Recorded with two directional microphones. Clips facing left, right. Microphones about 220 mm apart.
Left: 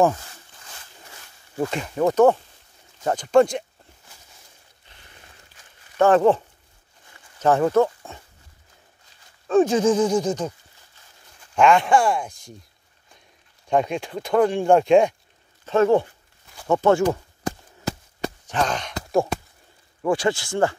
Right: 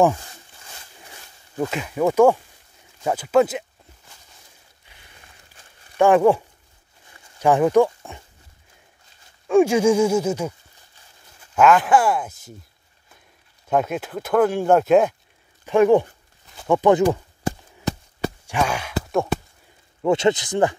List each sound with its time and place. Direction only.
1.7 s speech: 5° right (ahead or behind)
4.9 s a sound: 10° right (ahead or behind)
5.9 s speech: 10° right (ahead or behind)
9.5 s speech: 10° right (ahead or behind)
11.5 s speech: 5° right (ahead or behind)
13.7 s speech: 5° right (ahead or behind)
15.6 s speech: 15° right (ahead or behind)
17.8 s a sound: 5° right (ahead or behind)
20.0 s speech: 25° right (ahead or behind)